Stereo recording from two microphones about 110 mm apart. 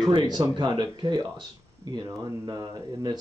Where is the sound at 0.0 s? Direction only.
35° right (ahead or behind).